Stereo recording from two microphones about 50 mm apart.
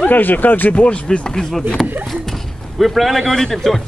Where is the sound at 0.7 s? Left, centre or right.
Left.